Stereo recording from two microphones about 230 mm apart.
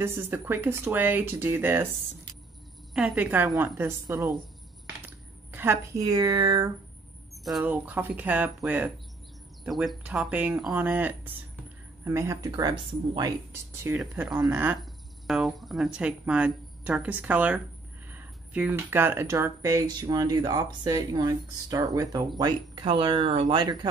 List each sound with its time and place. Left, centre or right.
0.0 s speech: centre
7.4 s speech: centre